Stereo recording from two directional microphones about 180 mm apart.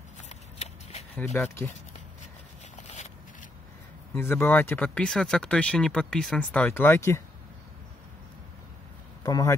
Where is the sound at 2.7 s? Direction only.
40° left (ahead or behind).